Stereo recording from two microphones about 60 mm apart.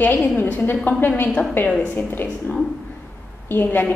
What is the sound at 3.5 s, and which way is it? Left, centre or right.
Speech, left.